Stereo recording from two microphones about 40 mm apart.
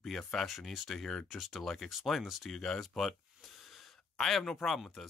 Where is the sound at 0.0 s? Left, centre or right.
Centre.